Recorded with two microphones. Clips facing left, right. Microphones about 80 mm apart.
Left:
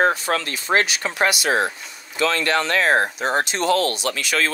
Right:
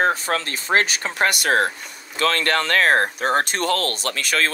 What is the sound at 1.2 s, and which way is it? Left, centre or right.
Speech, right.